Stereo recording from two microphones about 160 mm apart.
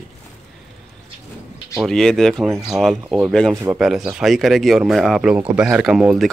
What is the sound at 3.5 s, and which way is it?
Speech, 20° right (ahead or behind).